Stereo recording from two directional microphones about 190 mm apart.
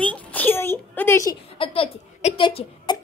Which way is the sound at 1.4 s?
30° left (ahead or behind).